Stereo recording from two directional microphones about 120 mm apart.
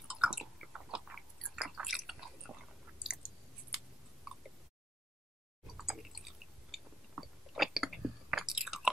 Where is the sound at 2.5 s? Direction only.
20° right (ahead or behind).